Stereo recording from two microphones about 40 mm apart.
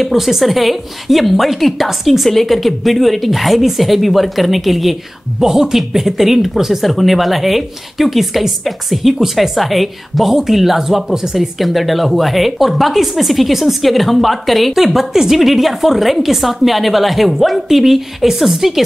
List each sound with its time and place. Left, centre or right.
0.0 s speech: centre